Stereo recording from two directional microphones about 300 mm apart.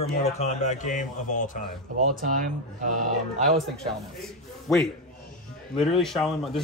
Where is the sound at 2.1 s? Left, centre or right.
Right.